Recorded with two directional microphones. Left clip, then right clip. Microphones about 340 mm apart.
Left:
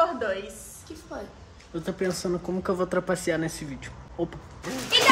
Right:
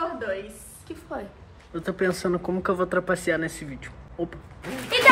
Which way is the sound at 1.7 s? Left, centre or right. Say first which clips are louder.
Right 3 dB; centre.